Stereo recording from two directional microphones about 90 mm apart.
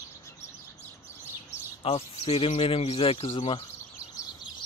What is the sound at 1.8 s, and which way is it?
Speech, 90° left.